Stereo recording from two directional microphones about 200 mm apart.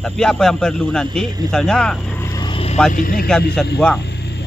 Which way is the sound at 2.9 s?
45° left (ahead or behind).